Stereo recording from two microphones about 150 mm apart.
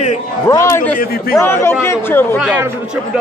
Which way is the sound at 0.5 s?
20° left (ahead or behind).